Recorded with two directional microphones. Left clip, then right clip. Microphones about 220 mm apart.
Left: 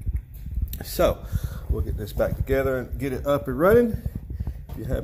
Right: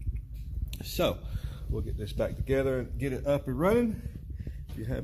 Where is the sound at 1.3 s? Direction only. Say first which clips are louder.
Left 6 dB; 30° left (ahead or behind).